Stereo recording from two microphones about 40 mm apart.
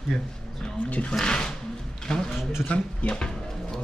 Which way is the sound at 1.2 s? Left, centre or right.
Left.